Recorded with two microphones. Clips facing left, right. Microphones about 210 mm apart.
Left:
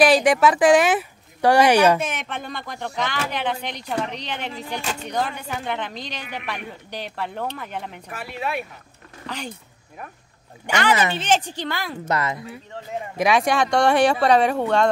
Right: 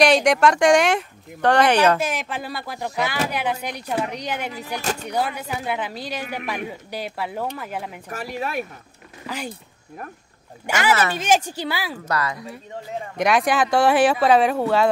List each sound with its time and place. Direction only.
0.0 s speech: centre (ahead or behind)
2.0 s speech: centre (ahead or behind)
8.1 s speech: 40° right (ahead or behind)
9.2 s speech: 10° right (ahead or behind)
11.1 s speech: 10° right (ahead or behind)
12.0 s speech: 20° left (ahead or behind)
13.2 s speech: centre (ahead or behind)